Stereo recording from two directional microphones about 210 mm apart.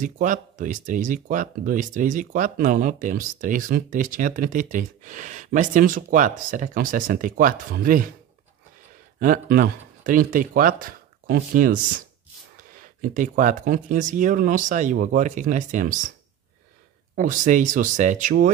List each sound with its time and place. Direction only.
0.0 s speech: 40° right (ahead or behind)
9.2 s speech: 45° right (ahead or behind)
17.1 s speech: 40° right (ahead or behind)